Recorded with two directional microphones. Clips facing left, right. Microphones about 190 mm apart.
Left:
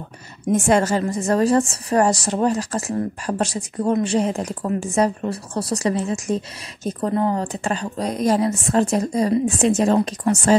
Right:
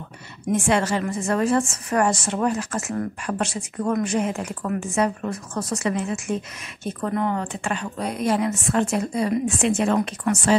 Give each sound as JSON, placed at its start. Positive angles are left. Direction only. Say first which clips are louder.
{"t": 0.5, "sound": "speech", "louder": "left 4 dB", "side_deg": 40}